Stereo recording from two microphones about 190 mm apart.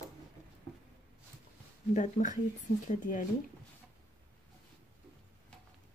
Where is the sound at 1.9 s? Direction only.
40° left (ahead or behind).